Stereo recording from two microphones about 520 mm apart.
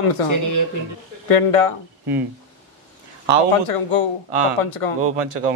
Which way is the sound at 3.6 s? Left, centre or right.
Left.